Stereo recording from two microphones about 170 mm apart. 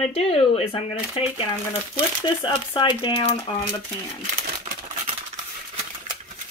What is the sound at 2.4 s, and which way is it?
Speech, 30° left (ahead or behind).